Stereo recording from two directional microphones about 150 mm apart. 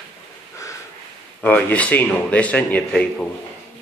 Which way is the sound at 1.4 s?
10° left (ahead or behind).